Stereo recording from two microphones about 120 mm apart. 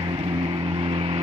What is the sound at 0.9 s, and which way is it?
Vehicle, 50° right (ahead or behind).